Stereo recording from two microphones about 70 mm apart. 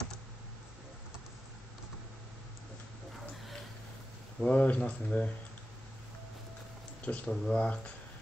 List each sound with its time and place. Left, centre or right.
4.4 s speech: centre
7.1 s speech: centre